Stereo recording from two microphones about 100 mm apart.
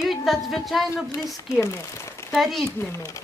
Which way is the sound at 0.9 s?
30° left (ahead or behind).